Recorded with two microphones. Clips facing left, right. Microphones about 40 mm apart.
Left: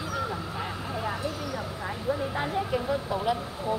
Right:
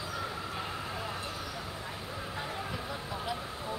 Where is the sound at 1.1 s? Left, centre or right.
Left.